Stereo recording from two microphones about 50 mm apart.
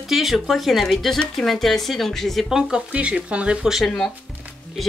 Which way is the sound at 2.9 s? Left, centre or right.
Right.